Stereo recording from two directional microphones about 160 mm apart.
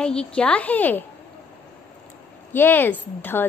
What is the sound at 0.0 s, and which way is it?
A woman's voice, 5° left (ahead or behind).